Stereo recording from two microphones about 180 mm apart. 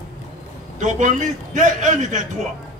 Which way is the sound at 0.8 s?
45° right (ahead or behind).